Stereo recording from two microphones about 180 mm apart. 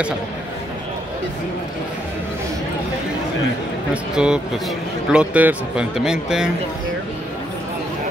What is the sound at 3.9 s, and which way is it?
A man's voice, 5° right (ahead or behind).